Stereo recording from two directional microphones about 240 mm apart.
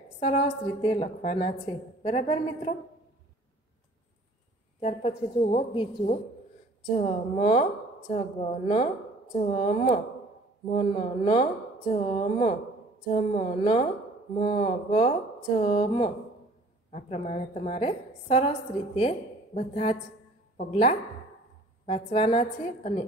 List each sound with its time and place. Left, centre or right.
0.2 s a woman's voice: left
4.7 s a woman's voice: left